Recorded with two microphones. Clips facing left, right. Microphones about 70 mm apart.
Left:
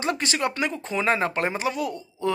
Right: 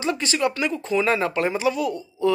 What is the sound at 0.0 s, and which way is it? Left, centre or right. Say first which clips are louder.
Speech: right 2 dB; left.